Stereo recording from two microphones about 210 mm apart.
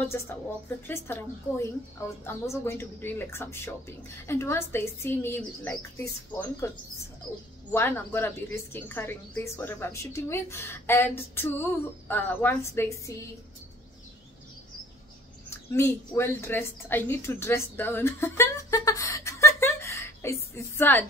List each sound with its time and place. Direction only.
0.8 s a woman's voice: 10° left (ahead or behind)
7.7 s a woman's voice: 10° left (ahead or behind)
15.7 s a woman's voice: 10° left (ahead or behind)